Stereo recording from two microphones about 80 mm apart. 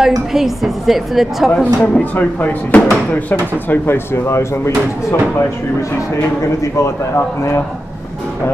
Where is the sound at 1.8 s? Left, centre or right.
Centre; by 5.2 s left.